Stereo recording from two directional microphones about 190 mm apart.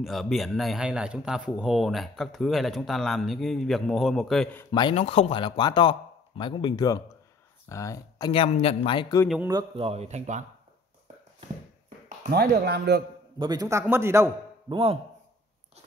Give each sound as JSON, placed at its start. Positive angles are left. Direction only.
{"t": 0.0, "sound": "speech", "side_deg": 0}
{"t": 4.6, "sound": "speech", "side_deg": 25}
{"t": 8.3, "sound": "speech", "side_deg": 30}
{"t": 9.5, "sound": "a man's voice", "side_deg": -20}
{"t": 9.8, "sound": "speech", "side_deg": -35}
{"t": 12.2, "sound": "speech", "side_deg": -55}
{"t": 13.4, "sound": "a man's voice", "side_deg": -20}
{"t": 14.7, "sound": "speech", "side_deg": -30}